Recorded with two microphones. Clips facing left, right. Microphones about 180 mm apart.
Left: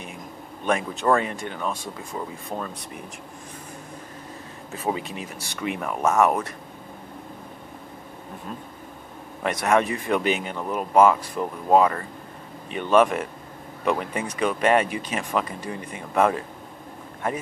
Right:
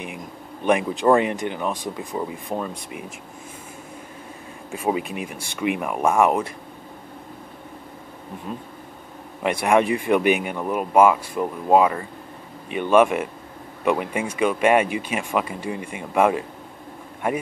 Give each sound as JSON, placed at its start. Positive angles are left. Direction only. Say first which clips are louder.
{"t": 0.7, "sound": "speech", "louder": "right 4 dB", "side_deg": -15}
{"t": 4.6, "sound": "speech", "louder": "right 4 dB", "side_deg": -15}
{"t": 8.5, "sound": "speech", "louder": "right 5 dB", "side_deg": -5}